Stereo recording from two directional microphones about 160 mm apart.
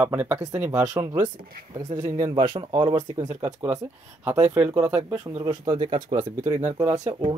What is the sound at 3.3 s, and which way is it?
Speech, 10° right (ahead or behind).